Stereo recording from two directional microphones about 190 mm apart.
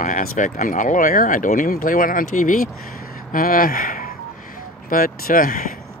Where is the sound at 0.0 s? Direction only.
45° left (ahead or behind).